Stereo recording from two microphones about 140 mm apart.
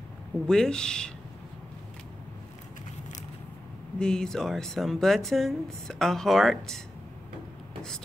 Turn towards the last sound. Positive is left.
turn(degrees=0)  # may be behind; listen again after turning